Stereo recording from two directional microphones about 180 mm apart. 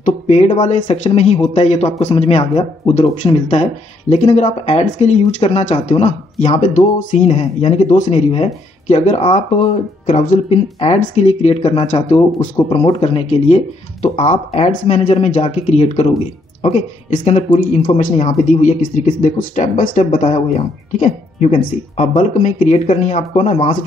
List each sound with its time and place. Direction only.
0.0 s speech: 40° left (ahead or behind)
17.1 s speech: 45° left (ahead or behind)